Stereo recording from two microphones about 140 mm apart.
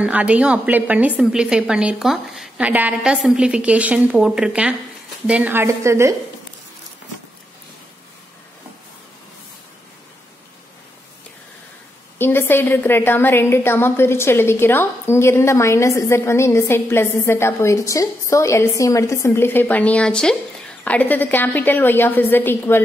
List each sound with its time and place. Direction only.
0.0 s a woman's voice: 10° right (ahead or behind)
12.2 s a woman's voice: 15° left (ahead or behind)